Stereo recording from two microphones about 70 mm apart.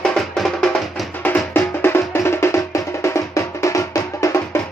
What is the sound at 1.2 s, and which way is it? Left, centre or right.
Music, left.